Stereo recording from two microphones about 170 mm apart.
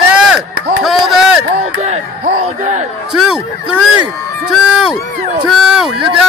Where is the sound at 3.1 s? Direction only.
5° right (ahead or behind).